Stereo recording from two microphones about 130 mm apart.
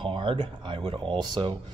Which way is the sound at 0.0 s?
40° right (ahead or behind).